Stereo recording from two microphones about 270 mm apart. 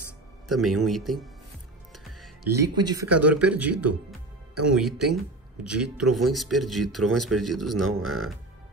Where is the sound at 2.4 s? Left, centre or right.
Right.